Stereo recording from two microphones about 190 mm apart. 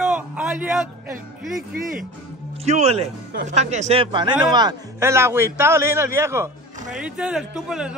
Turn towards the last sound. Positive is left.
turn(degrees=-5)  # may be behind; listen again after turning